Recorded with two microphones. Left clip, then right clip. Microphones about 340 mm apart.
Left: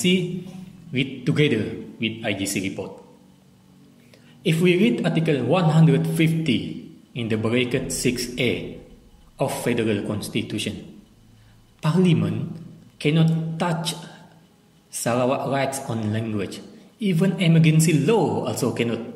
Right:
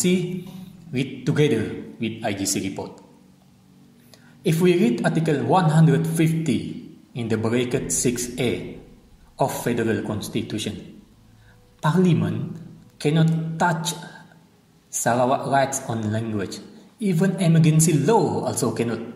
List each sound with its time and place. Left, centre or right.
0.9 s a man's voice: right
4.4 s a man's voice: right
11.8 s a man's voice: right